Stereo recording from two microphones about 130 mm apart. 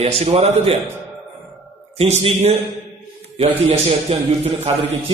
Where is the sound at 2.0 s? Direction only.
50° right (ahead or behind).